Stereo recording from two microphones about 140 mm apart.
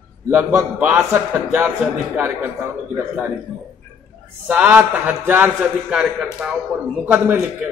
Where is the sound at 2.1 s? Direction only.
15° right (ahead or behind).